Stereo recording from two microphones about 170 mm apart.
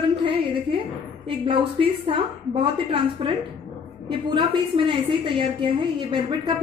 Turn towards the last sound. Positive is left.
turn(degrees=-25)  # may be behind; listen again after turning